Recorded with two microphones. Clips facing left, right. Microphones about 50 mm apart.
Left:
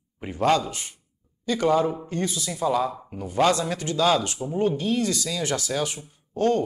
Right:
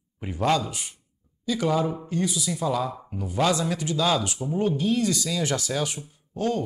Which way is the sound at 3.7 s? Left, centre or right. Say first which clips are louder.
Left 2 dB; left.